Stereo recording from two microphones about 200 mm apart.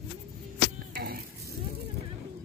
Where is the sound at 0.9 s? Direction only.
50° right (ahead or behind).